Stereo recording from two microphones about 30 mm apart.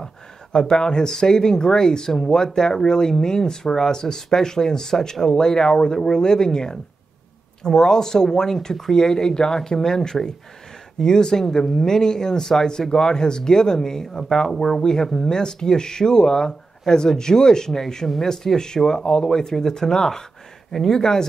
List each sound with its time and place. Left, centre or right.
0.0 s speech: centre
14.5 s speech: centre
14.8 s speech: centre
20.7 s speech: centre
21.0 s speech: left